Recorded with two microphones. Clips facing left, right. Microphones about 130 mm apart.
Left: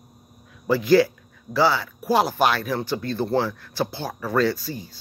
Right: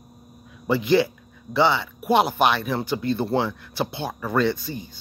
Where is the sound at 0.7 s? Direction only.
Centre (ahead or behind).